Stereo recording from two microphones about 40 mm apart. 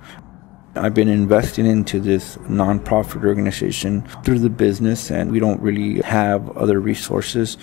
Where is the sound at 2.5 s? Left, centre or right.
Centre.